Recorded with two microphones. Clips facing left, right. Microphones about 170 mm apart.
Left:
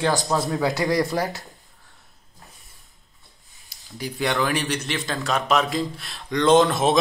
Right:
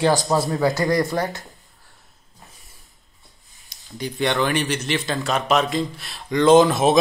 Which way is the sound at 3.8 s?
Centre (ahead or behind).